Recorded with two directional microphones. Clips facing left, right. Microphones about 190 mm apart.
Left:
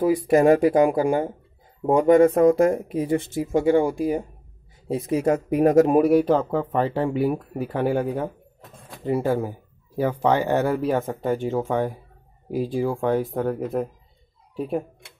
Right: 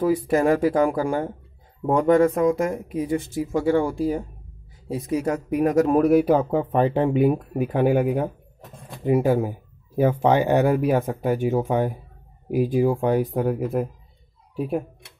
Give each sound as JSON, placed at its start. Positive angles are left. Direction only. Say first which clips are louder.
{"t": 0.0, "sound": "speech", "louder": "left 2 dB", "side_deg": 15}
{"t": 2.2, "sound": "speech", "louder": "left 4 dB", "side_deg": 30}
{"t": 3.6, "sound": "speech", "louder": "left 1 dB", "side_deg": 15}
{"t": 4.8, "sound": "speech", "louder": "left 3 dB", "side_deg": 25}
{"t": 6.2, "sound": "speech", "louder": "right 1 dB", "side_deg": -15}
{"t": 14.5, "sound": "speech", "louder": "right 1 dB", "side_deg": 0}